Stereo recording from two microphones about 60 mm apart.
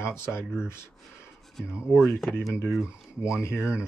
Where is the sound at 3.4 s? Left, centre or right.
Left.